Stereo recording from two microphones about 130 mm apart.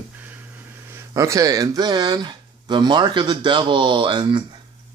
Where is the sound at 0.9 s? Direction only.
25° right (ahead or behind).